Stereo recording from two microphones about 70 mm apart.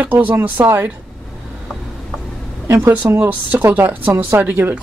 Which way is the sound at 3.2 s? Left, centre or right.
Right.